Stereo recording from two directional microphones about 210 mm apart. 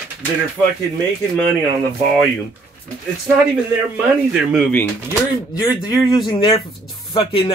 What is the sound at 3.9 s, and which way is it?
Speech, 5° right (ahead or behind).